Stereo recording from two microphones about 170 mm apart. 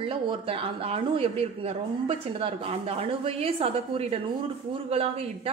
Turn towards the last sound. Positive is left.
turn(degrees=-35)  # may be behind; listen again after turning